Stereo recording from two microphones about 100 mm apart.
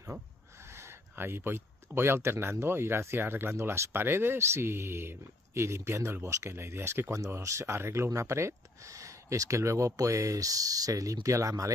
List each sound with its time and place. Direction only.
0.7 s speech: 25° right (ahead or behind)